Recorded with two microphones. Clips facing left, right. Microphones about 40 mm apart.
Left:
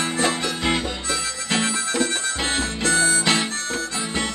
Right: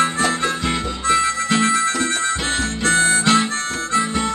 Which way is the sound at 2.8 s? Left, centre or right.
Right.